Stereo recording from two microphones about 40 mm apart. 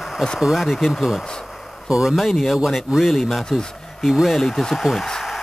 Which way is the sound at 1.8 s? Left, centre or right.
Centre.